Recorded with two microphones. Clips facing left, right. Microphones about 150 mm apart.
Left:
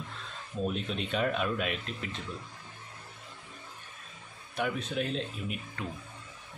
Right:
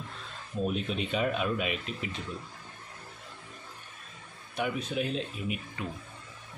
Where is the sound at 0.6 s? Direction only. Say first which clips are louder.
Right 2 dB; 5° right (ahead or behind).